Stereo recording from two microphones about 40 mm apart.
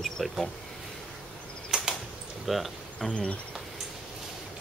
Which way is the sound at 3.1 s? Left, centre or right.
Left.